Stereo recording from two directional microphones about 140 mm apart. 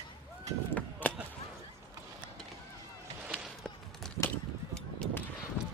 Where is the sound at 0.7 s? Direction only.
10° left (ahead or behind).